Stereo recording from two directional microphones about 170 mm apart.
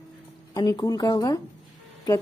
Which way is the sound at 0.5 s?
20° left (ahead or behind).